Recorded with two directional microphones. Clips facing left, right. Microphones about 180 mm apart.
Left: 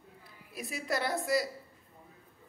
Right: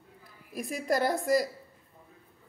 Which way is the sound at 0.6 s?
45° right (ahead or behind).